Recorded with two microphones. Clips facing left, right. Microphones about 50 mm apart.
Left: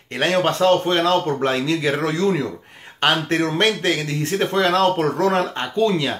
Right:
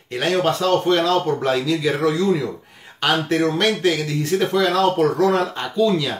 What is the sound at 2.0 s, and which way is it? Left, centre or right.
Speech, left.